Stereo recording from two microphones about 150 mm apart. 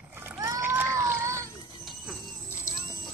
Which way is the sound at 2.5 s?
20° left (ahead or behind).